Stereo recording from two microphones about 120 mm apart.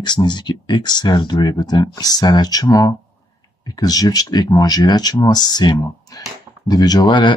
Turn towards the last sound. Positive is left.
turn(degrees=40)  # may be behind; listen again after turning